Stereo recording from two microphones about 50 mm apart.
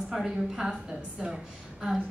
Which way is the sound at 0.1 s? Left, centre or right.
Centre.